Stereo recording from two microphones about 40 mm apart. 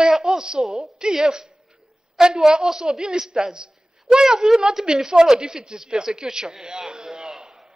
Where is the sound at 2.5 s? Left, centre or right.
Centre.